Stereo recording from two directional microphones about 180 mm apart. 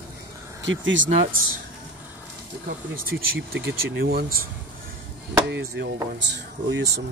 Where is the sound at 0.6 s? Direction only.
90° right.